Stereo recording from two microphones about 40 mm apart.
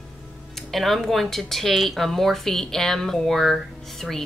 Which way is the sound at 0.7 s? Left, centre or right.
Centre.